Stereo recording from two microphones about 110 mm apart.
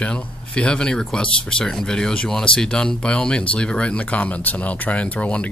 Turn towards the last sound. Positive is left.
turn(degrees=10)  # may be behind; listen again after turning